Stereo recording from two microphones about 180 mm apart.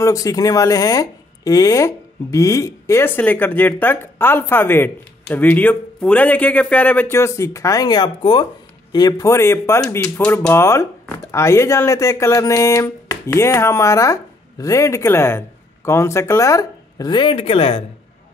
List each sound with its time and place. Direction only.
0.0 s speech: 20° left (ahead or behind)